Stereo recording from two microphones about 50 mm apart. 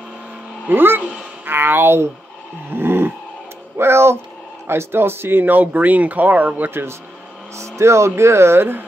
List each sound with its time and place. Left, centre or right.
0.7 s speech: right
1.4 s a sound: right
3.7 s speech: right
6.7 s speech: right
7.5 s speech: right